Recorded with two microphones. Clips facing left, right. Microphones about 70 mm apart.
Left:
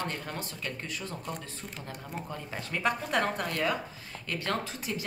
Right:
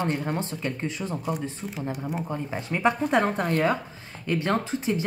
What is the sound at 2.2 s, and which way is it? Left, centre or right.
Speech, right.